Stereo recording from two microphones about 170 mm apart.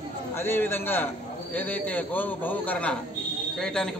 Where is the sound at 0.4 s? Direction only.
15° left (ahead or behind).